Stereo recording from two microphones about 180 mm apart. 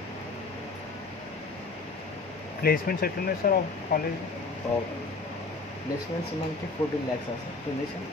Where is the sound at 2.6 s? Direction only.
55° left (ahead or behind).